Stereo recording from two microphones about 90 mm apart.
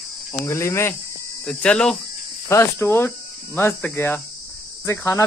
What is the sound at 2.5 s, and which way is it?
Speech, 25° left (ahead or behind).